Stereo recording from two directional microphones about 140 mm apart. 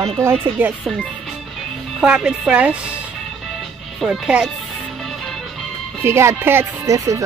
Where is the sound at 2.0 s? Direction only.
5° right (ahead or behind).